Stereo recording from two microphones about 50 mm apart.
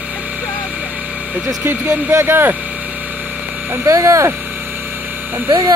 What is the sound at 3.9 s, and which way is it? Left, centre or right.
Speech, right.